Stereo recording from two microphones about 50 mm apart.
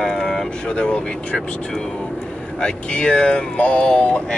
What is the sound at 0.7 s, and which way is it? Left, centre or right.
Speech, left.